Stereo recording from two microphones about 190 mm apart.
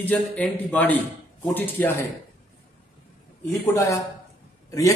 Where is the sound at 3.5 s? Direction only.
15° left (ahead or behind).